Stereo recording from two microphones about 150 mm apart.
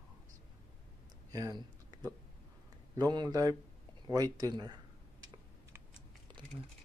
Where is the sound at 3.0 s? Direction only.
30° right (ahead or behind).